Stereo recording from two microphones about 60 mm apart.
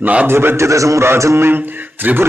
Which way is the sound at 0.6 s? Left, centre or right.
Right.